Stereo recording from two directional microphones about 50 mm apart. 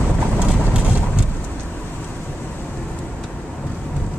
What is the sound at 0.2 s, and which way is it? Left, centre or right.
Vehicle, right.